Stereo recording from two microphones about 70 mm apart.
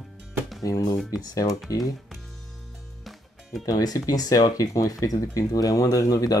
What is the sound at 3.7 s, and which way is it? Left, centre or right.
Speech, left.